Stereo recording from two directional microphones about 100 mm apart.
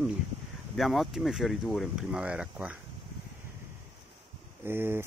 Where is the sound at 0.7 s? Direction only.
Centre (ahead or behind).